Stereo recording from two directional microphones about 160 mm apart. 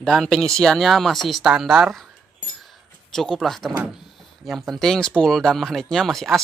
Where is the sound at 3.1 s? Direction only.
Centre (ahead or behind).